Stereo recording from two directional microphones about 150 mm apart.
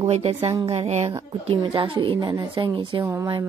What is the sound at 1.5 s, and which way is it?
Speech, 35° right (ahead or behind).